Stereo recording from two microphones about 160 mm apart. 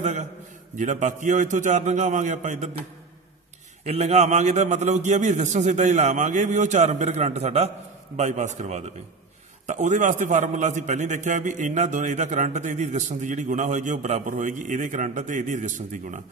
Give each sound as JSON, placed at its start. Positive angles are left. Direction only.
{"t": 0.0, "sound": "a sound", "side_deg": -50}
{"t": 0.7, "sound": "a man's voice", "side_deg": -50}
{"t": 3.8, "sound": "a man's voice", "side_deg": -45}